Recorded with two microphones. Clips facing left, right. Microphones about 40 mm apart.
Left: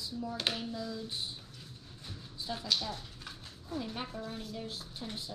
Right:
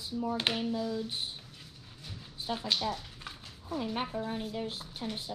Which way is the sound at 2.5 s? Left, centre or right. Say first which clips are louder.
Right 3 dB; right.